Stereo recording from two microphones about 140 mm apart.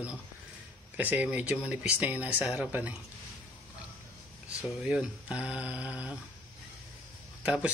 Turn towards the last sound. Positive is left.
turn(degrees=-10)  # may be behind; listen again after turning